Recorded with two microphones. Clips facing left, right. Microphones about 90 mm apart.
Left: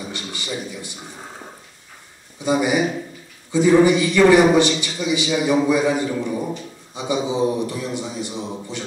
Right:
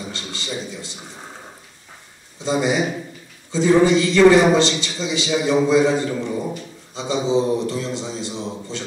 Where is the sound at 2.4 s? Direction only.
15° left (ahead or behind).